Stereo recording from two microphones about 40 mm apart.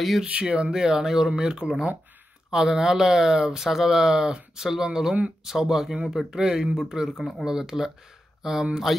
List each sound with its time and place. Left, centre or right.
0.2 s speech: right
0.7 s speech: centre
6.8 s speech: centre
8.9 s music: centre